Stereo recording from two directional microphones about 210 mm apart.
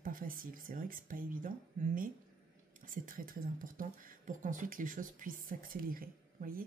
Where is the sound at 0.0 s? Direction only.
40° right (ahead or behind).